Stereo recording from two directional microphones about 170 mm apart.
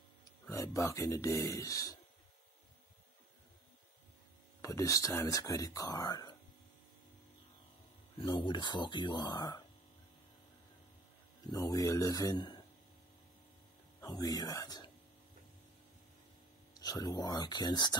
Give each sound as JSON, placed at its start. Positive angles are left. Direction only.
{"t": 0.5, "sound": "speech", "side_deg": 15}
{"t": 4.6, "sound": "speech", "side_deg": 20}
{"t": 8.2, "sound": "speech", "side_deg": 30}
{"t": 11.4, "sound": "speech", "side_deg": 20}
{"t": 14.0, "sound": "speech", "side_deg": 20}
{"t": 16.7, "sound": "speech", "side_deg": 20}